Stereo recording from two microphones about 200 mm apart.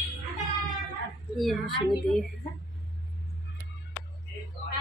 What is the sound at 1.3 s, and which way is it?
Vehicle, centre (ahead or behind).